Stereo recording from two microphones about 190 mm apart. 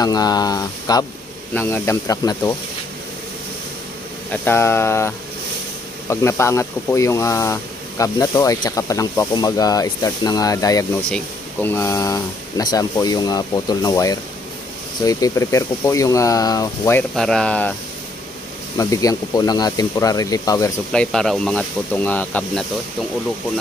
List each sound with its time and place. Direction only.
0.0 s speech: 20° left (ahead or behind)
4.3 s speech: 10° left (ahead or behind)
11.1 s speech: 10° left (ahead or behind)
17.1 s speech: 5° left (ahead or behind)
18.8 s speech: 15° left (ahead or behind)
20.9 s speech: 5° left (ahead or behind)